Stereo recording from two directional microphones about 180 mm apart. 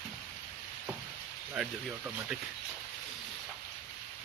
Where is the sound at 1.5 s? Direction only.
5° right (ahead or behind).